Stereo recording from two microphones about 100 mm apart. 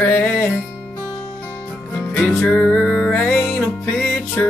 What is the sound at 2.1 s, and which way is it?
Music, 15° left (ahead or behind).